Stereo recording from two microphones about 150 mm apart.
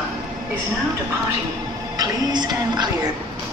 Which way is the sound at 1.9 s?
25° right (ahead or behind).